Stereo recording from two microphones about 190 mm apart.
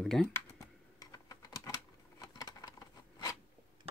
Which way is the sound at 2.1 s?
20° left (ahead or behind).